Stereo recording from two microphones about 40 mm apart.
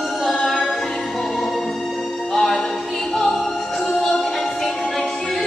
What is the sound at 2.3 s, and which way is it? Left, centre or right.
Music, centre.